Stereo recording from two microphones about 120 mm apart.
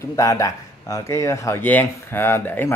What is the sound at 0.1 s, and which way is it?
Speech, 25° left (ahead or behind).